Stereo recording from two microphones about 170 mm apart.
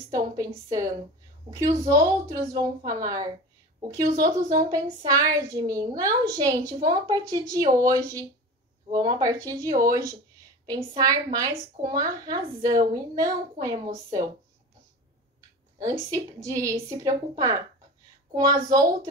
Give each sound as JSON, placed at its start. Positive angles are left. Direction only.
{"t": 0.1, "sound": "a woman's voice", "side_deg": -20}
{"t": 16.4, "sound": "a woman's voice", "side_deg": -20}